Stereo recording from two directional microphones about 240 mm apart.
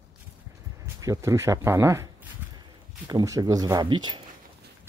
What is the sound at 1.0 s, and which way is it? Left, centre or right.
Speech, centre.